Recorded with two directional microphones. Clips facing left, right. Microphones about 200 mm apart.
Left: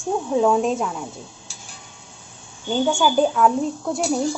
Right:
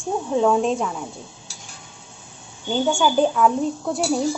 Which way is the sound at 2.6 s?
Centre (ahead or behind).